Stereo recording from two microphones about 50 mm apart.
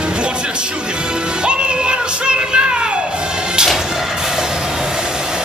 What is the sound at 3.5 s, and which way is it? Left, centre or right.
Music, centre.